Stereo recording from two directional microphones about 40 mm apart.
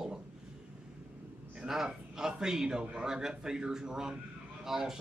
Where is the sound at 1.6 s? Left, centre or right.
Centre.